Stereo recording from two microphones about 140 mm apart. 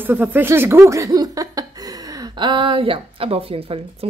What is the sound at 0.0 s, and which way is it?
A woman's voice, 15° right (ahead or behind).